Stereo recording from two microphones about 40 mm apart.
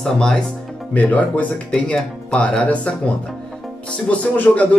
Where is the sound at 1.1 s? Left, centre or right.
Left.